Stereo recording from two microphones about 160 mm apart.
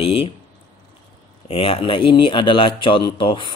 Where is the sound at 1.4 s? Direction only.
35° left (ahead or behind).